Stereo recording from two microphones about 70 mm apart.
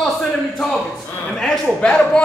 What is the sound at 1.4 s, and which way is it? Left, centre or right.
Speech, centre.